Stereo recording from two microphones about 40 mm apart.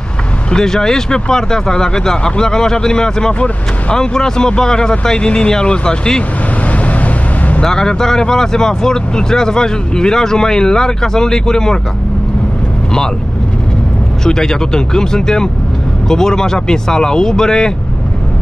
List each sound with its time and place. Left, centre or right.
0.5 s speech: centre
6.6 s vehicle: left
7.6 s speech: centre
14.2 s speech: centre